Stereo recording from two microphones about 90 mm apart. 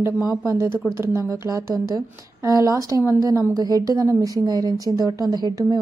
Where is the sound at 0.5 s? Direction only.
30° right (ahead or behind).